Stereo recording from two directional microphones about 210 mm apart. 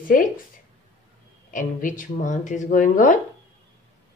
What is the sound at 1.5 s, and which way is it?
Speech, 40° left (ahead or behind).